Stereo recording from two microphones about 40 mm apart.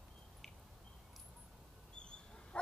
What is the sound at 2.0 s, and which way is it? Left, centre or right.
Dog, left.